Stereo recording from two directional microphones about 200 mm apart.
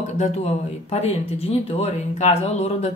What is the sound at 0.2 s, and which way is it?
Speech, 30° left (ahead or behind).